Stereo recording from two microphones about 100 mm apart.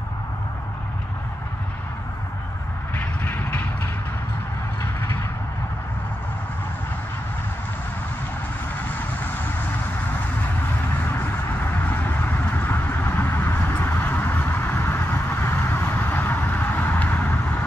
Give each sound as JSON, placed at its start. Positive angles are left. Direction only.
{"t": 2.9, "sound": "vehicle", "side_deg": 20}
{"t": 11.8, "sound": "vehicle", "side_deg": 20}